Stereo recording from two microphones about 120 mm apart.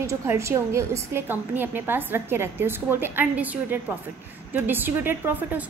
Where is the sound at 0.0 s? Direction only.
25° right (ahead or behind).